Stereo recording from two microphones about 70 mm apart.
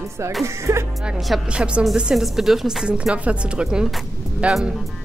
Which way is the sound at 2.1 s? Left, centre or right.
Centre.